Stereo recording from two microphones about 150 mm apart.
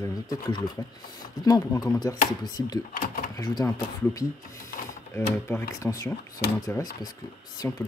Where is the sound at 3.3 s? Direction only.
25° left (ahead or behind).